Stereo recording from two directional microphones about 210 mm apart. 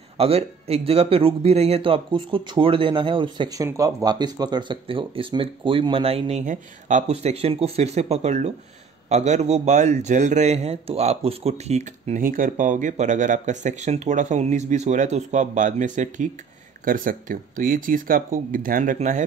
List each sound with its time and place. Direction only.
0.2 s speech: 30° right (ahead or behind)